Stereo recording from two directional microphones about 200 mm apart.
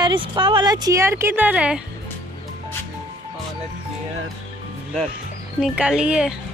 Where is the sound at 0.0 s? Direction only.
25° right (ahead or behind); by 1.8 s 5° right (ahead or behind).